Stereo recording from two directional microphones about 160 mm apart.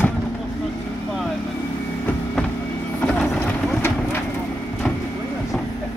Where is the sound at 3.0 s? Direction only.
5° left (ahead or behind).